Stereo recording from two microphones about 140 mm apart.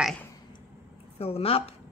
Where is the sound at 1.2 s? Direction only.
45° left (ahead or behind).